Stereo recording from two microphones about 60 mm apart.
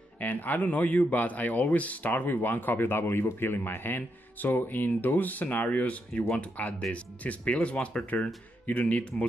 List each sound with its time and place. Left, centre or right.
0.2 s speech: left